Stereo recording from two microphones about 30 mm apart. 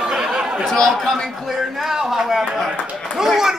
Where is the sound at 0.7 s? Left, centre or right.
Centre.